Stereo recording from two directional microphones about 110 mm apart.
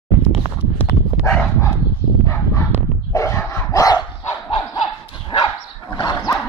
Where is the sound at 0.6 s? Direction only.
15° left (ahead or behind).